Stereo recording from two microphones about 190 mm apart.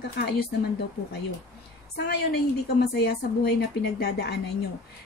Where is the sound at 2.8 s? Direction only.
60° left (ahead or behind).